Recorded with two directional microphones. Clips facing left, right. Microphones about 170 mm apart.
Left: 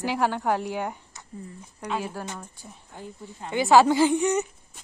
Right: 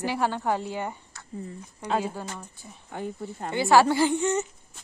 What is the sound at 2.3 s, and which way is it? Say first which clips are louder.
Speech: left 1 dB; 10° left (ahead or behind).